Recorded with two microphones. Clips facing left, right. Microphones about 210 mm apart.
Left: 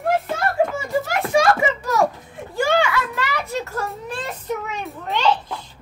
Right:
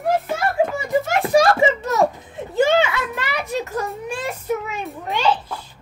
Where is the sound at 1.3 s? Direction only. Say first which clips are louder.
Right 2 dB; 35° right (ahead or behind).